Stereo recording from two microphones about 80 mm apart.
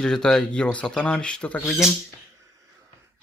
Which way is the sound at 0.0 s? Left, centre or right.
Centre.